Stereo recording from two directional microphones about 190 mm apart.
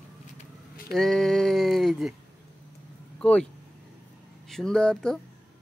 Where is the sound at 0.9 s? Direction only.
Centre (ahead or behind).